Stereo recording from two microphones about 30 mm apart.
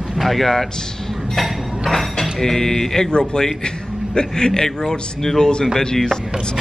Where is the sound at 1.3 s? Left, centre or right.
Centre.